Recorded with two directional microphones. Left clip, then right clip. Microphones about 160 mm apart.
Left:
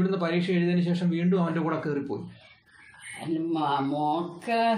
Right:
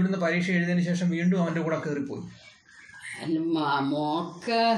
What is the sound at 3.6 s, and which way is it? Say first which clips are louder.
Speech: even; 5° left (ahead or behind).